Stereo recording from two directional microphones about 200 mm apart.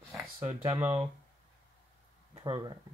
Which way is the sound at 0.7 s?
10° right (ahead or behind).